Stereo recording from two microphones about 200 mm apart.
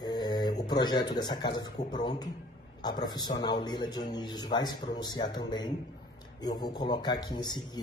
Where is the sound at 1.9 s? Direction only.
20° left (ahead or behind).